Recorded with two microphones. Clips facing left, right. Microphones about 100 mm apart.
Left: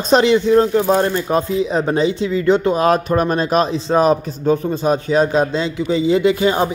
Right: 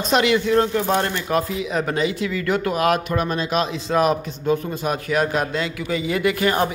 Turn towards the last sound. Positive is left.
turn(degrees=20)  # may be behind; listen again after turning